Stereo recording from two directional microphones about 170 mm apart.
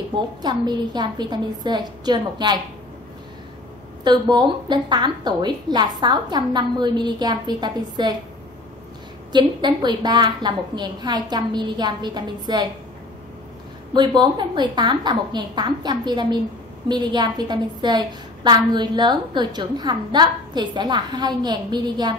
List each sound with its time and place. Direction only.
0.4 s a woman's voice: 25° right (ahead or behind)
4.0 s a woman's voice: 25° right (ahead or behind)
9.3 s a woman's voice: 25° right (ahead or behind)
13.9 s a woman's voice: 25° right (ahead or behind)